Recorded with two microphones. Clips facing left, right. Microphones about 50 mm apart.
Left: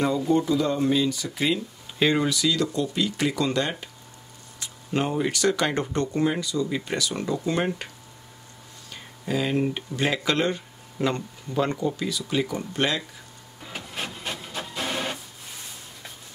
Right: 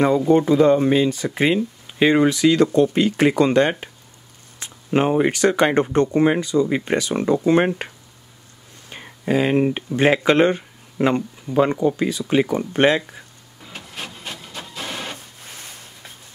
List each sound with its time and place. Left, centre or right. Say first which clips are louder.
0.3 s speech: right 10 dB; right
2.0 s speech: right 7 dB; right
8.9 s speech: right 7 dB; right
12.0 s speech: right 7 dB; right
13.6 s printer: even; centre